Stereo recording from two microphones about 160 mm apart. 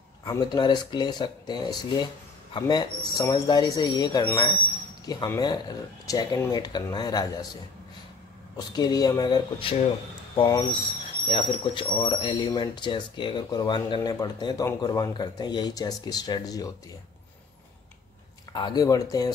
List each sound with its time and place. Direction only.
0.2 s speech: 25° left (ahead or behind)
8.5 s speech: 25° left (ahead or behind)
18.5 s speech: 30° left (ahead or behind)